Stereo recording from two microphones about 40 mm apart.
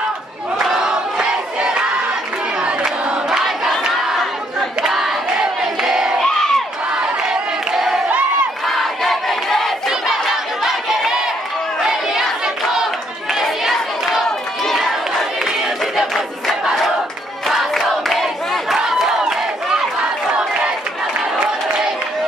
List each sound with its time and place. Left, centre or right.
0.7 s battle cry: centre
2.6 s crowd: right
4.2 s battle cry: centre
5.6 s crowd: centre
6.2 s crowd: centre
7.7 s crowd: centre
10.6 s crowd: centre
11.8 s chatter: centre
13.3 s crowd: centre
17.5 s crowd: centre
18.8 s crowd: centre